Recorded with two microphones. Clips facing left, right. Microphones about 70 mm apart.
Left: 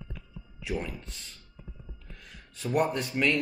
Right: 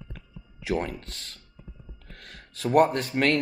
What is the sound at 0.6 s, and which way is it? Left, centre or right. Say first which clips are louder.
Speech: right 6 dB; right.